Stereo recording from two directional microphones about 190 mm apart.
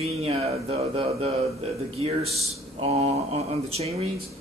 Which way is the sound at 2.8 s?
35° right (ahead or behind).